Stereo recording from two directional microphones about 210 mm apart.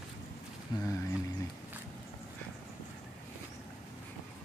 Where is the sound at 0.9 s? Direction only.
15° left (ahead or behind).